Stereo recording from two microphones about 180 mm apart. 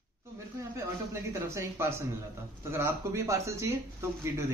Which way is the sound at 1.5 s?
15° right (ahead or behind).